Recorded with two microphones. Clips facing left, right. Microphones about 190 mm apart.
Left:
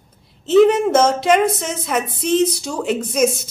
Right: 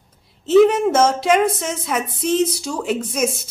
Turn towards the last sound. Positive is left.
turn(degrees=-5)  # may be behind; listen again after turning